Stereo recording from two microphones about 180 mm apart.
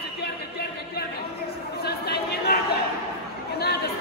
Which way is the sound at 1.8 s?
60° left (ahead or behind).